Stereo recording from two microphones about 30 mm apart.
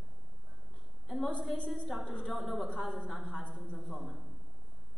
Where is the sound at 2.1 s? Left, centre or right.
Left.